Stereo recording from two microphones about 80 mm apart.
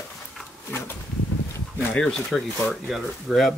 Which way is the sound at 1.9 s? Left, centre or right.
Centre.